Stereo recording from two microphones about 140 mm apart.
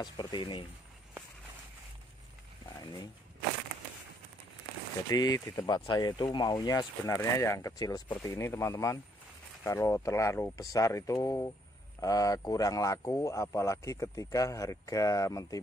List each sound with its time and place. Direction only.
0.0 s speech: 30° left (ahead or behind)
2.8 s speech: 25° left (ahead or behind)
5.1 s speech: 25° left (ahead or behind)
5.7 s speech: 30° left (ahead or behind)